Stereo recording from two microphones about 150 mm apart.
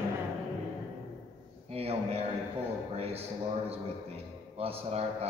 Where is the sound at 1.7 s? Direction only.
45° right (ahead or behind).